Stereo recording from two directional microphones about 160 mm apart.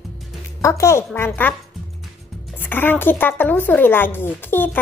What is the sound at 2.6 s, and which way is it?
Speech, 10° left (ahead or behind).